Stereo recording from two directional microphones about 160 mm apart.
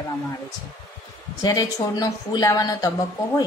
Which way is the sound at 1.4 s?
25° left (ahead or behind).